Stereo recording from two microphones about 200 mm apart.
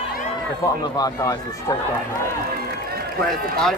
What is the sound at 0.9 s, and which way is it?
Speech, 20° left (ahead or behind).